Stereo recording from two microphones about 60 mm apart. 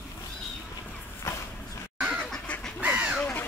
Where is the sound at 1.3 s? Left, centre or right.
Left.